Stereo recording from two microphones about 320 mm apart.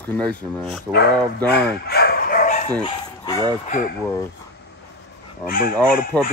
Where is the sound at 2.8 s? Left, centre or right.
Centre.